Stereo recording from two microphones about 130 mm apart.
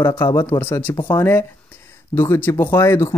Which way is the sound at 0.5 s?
15° left (ahead or behind).